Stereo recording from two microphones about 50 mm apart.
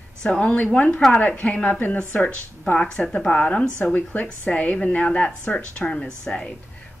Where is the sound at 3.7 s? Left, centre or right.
Left.